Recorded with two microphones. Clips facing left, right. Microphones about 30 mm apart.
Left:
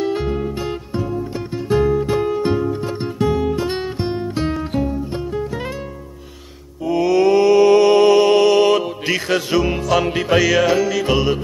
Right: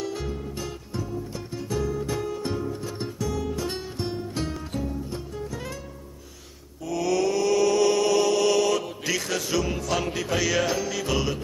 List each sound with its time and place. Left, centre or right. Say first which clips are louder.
0.0 s music: left 11 dB; left
6.8 s mantra: left 9 dB; left
8.5 s music: left 9 dB; left
10.4 s music: left 7 dB; centre
11.1 s music: left 6 dB; left